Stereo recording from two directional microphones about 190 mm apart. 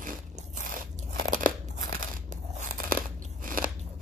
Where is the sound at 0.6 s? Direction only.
45° right (ahead or behind).